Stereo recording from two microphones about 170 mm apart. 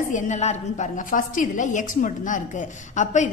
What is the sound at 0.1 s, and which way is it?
A woman's voice, 45° left (ahead or behind).